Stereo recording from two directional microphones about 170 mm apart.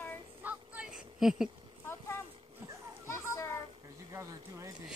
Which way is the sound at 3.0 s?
15° left (ahead or behind).